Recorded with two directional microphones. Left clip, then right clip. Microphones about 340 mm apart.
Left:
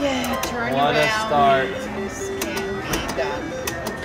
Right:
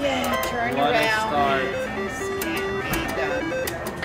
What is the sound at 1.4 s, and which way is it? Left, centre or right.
Speech, left.